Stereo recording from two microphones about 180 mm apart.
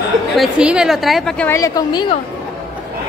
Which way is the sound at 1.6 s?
20° left (ahead or behind).